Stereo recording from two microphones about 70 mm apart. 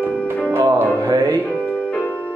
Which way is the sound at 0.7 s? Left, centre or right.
Right.